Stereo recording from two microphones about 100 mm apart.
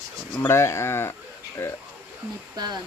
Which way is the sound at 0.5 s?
30° left (ahead or behind).